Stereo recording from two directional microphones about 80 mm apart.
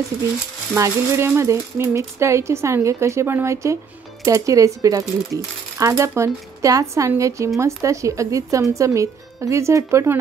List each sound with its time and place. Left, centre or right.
0.7 s speech: right